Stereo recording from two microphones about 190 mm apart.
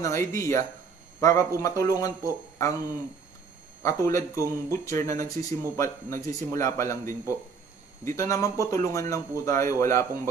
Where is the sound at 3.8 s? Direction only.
15° left (ahead or behind).